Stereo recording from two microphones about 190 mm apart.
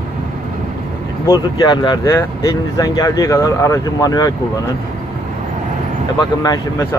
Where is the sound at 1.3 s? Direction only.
25° left (ahead or behind).